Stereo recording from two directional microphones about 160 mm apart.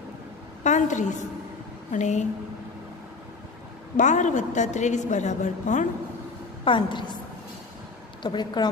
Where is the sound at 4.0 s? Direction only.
50° left (ahead or behind).